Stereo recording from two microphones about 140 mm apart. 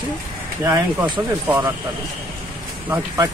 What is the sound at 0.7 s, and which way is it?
Speech, 30° right (ahead or behind).